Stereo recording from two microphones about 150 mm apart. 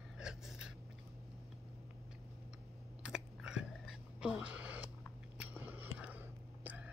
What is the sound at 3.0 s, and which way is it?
Biting, 5° right (ahead or behind).